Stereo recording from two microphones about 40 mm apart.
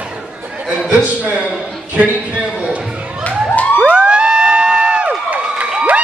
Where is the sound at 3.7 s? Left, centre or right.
Right.